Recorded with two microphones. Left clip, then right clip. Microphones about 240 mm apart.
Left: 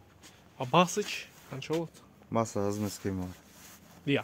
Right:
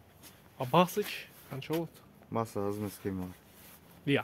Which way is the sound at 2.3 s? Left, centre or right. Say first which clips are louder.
Left 3 dB; left.